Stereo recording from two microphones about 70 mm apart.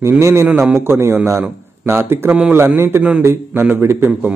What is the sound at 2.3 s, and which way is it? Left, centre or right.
Speech, centre.